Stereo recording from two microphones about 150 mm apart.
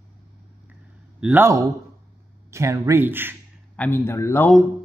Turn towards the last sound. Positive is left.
turn(degrees=15)  # may be behind; listen again after turning